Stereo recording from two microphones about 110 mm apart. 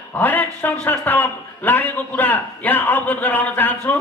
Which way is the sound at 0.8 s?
15° left (ahead or behind).